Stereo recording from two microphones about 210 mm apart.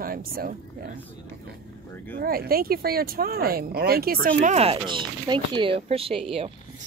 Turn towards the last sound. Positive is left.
turn(degrees=-25)  # may be behind; listen again after turning